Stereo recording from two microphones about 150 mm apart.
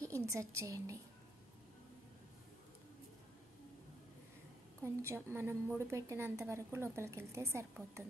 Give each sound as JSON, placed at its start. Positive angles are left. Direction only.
{"t": 0.0, "sound": "a woman's voice", "side_deg": -20}
{"t": 4.8, "sound": "a woman's voice", "side_deg": -15}